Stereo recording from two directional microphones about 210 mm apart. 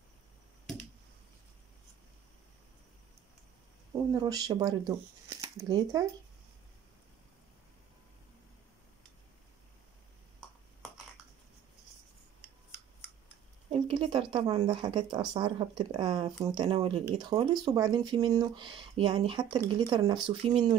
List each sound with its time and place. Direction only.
3.9 s speech: 20° right (ahead or behind)
13.7 s speech: 25° right (ahead or behind)